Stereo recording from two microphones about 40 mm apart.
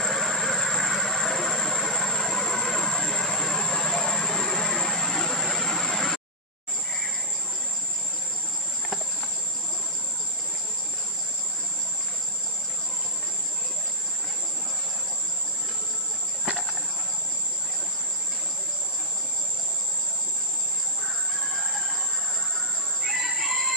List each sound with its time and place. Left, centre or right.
0.0 s vehicle: centre
23.0 s chicken: right